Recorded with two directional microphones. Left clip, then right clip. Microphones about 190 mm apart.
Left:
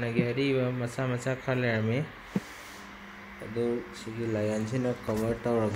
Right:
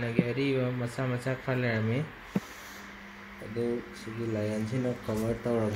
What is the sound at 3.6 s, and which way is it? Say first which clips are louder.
Speech: left 2 dB; centre (ahead or behind).